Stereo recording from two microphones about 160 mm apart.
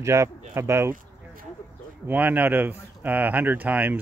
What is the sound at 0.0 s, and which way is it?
Speech, 20° right (ahead or behind).